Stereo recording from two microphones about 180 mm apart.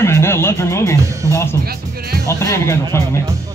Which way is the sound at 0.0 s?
15° left (ahead or behind).